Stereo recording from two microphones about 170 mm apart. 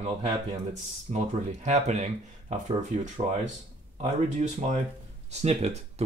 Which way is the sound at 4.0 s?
40° right (ahead or behind).